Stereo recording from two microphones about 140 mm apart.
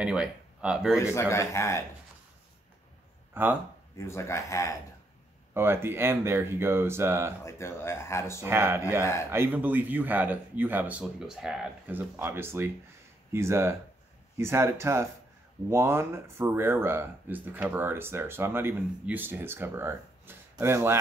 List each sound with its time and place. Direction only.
0.0 s speech: 5° right (ahead or behind)
0.9 s speech: 20° left (ahead or behind)
3.4 s speech: 15° right (ahead or behind)
4.0 s speech: 20° left (ahead or behind)
5.5 s speech: 15° right (ahead or behind)
7.4 s speech: 20° left (ahead or behind)
8.4 s speech: 15° right (ahead or behind)
9.0 s speech: 20° left (ahead or behind)
9.3 s speech: 15° right (ahead or behind)